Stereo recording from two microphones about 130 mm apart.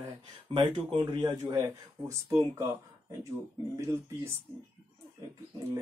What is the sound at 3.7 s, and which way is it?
Speech, 20° right (ahead or behind).